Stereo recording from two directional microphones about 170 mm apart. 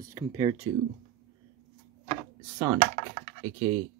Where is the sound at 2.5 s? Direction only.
10° right (ahead or behind).